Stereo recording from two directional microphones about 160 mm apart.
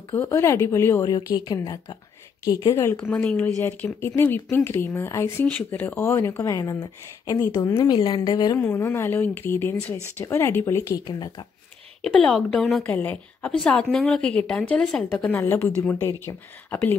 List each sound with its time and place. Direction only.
0.1 s a woman's voice: 15° left (ahead or behind)
8.5 s speech: 15° left (ahead or behind)
12.0 s a woman's voice: 5° left (ahead or behind)